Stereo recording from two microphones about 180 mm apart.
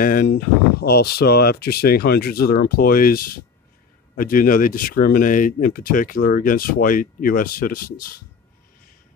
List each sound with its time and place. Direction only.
0.0 s speech: 50° left (ahead or behind)
0.3 s speech: 65° left (ahead or behind)